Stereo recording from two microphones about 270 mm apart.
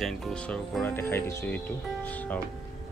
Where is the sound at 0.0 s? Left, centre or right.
Centre.